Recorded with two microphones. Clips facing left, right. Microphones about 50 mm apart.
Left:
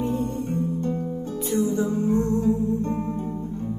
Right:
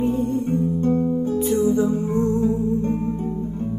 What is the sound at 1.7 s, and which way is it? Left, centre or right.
Music, right.